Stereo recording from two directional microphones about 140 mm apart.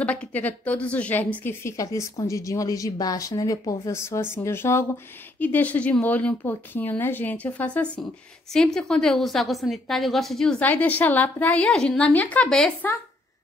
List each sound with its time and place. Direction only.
0.0 s a woman's voice: 10° left (ahead or behind)